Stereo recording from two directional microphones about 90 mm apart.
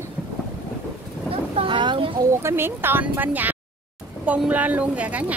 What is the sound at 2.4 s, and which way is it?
A woman's voice, 25° right (ahead or behind).